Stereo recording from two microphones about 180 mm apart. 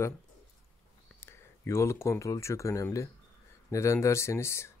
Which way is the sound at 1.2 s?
15° left (ahead or behind).